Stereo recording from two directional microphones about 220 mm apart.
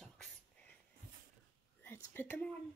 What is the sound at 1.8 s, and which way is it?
Speech, 10° left (ahead or behind).